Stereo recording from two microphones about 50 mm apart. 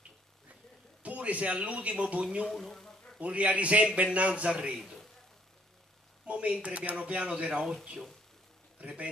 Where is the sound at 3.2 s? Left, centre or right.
Right.